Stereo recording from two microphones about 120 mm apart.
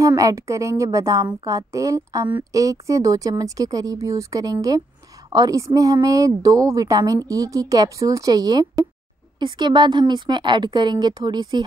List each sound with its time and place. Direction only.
0.0 s a woman's voice: 25° right (ahead or behind)